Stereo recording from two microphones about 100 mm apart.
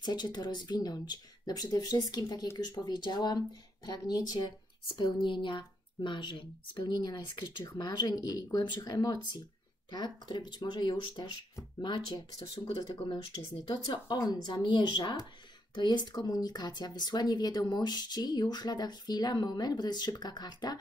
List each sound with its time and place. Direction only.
0.0 s speech: 45° left (ahead or behind)
13.7 s speech: 50° left (ahead or behind)